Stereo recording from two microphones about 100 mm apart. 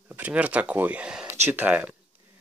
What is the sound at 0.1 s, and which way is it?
Speech, 15° right (ahead or behind).